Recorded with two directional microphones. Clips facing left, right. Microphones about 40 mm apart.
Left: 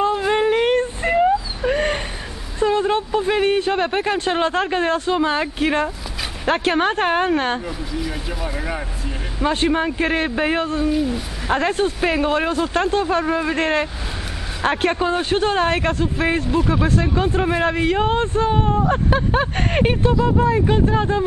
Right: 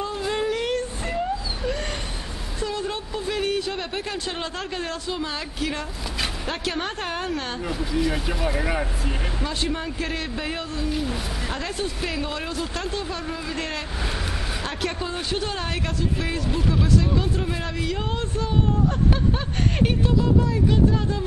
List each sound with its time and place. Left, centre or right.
0.0 s a sound: left
2.6 s speech: left
7.6 s speech: centre
9.4 s speech: left
10.9 s speech: centre
11.5 s speech: left